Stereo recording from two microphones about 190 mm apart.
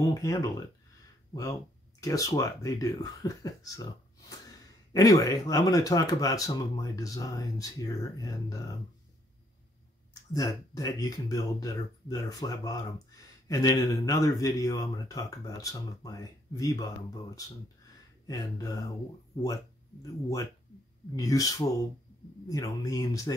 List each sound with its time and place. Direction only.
0.0 s speech: 15° left (ahead or behind)
10.3 s speech: 20° left (ahead or behind)